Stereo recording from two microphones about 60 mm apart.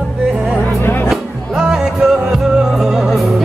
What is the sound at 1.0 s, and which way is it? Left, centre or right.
Music, centre.